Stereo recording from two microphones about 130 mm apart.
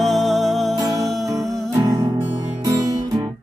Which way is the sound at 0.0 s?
Centre (ahead or behind).